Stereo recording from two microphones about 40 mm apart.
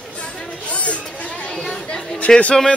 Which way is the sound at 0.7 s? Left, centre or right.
Left.